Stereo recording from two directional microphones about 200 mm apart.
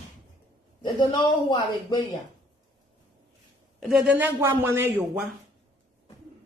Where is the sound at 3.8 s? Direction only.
Centre (ahead or behind).